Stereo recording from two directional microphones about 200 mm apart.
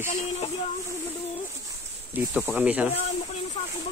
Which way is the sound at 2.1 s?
5° right (ahead or behind).